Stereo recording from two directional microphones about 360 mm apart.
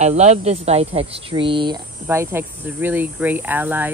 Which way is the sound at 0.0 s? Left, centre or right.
Centre.